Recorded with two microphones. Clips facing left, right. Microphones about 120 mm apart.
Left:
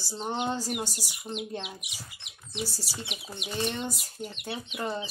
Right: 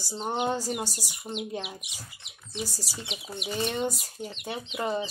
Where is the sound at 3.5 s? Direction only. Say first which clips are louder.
Right 3 dB; 5° right (ahead or behind).